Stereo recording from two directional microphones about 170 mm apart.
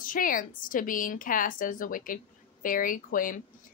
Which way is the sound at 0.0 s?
55° left (ahead or behind).